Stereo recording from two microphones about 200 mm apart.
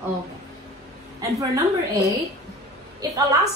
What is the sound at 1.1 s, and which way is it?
Speech, 15° right (ahead or behind).